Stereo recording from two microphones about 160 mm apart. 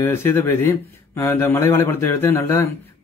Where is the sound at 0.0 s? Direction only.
15° left (ahead or behind).